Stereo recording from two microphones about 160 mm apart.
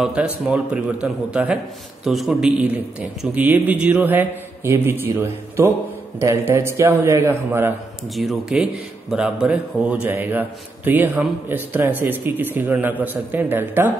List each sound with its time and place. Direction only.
0.0 s a man's voice: 5° right (ahead or behind)
8.1 s a man's voice: centre (ahead or behind)